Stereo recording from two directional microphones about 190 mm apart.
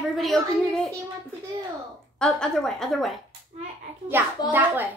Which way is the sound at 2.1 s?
5° left (ahead or behind).